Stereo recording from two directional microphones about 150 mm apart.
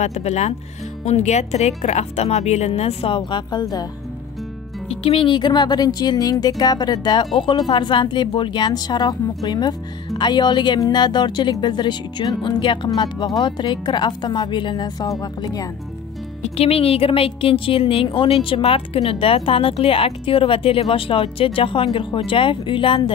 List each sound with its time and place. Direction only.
0.0 s speech: 45° left (ahead or behind); by 3.8 s 30° left (ahead or behind)
4.8 s speech: 40° left (ahead or behind)
16.4 s a woman's voice: 40° left (ahead or behind)